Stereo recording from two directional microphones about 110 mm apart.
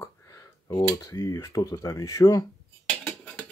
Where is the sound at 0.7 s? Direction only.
30° left (ahead or behind).